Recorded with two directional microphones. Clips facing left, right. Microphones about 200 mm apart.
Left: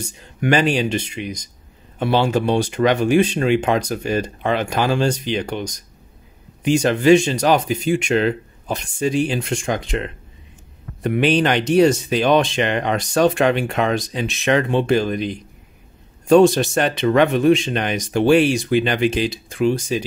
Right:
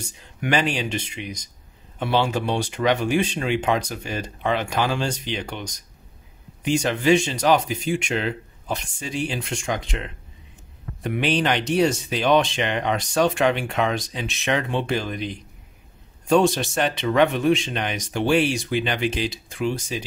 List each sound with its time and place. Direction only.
0.4 s speech: 45° left (ahead or behind)
6.8 s speech: 45° left (ahead or behind)
16.3 s speech: 45° left (ahead or behind)